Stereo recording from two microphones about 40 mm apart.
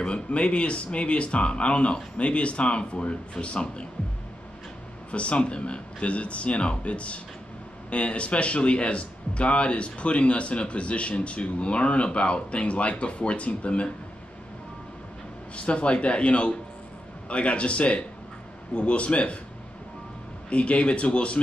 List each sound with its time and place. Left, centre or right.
0.0 s speech: left
5.1 s a man's voice: left
15.5 s a man's voice: left
20.4 s a man's voice: left